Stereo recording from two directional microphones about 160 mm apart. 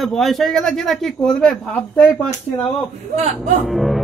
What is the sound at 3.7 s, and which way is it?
Speech, centre (ahead or behind).